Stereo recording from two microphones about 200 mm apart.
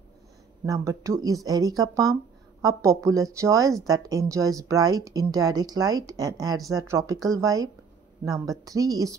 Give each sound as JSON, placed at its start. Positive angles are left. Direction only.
{"t": 0.7, "sound": "speech", "side_deg": -15}